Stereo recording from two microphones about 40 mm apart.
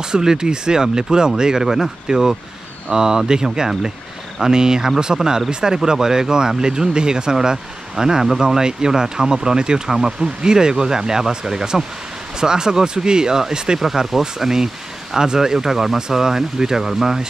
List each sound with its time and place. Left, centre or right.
0.0 s speech: centre
13.7 s speech: centre